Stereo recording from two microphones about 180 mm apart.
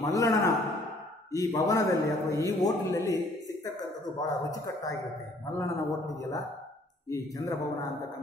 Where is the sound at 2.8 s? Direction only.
20° left (ahead or behind).